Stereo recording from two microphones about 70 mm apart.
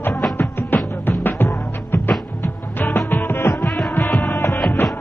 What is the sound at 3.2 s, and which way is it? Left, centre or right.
Music, left.